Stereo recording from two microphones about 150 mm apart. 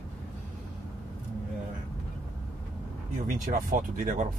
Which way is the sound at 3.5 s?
60° right (ahead or behind).